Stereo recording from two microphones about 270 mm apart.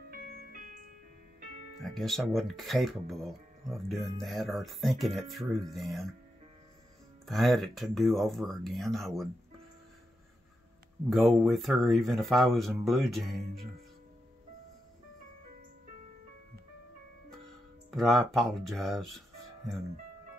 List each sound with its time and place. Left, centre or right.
0.1 s music: right
1.8 s speech: centre
7.2 s speech: centre
11.1 s speech: centre
17.9 s speech: centre